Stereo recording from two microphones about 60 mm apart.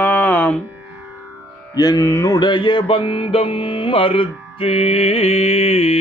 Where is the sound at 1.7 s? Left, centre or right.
Left.